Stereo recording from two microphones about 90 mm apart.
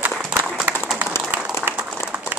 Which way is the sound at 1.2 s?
10° right (ahead or behind).